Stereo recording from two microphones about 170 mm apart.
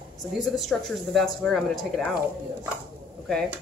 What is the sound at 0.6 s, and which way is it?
A woman's voice, centre (ahead or behind).